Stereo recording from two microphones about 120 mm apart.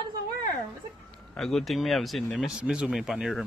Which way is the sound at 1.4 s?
Centre (ahead or behind).